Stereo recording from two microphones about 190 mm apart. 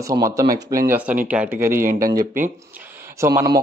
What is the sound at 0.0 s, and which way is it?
A man's voice, 15° right (ahead or behind).